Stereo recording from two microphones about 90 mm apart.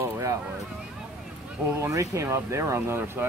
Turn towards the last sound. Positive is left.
turn(degrees=-25)  # may be behind; listen again after turning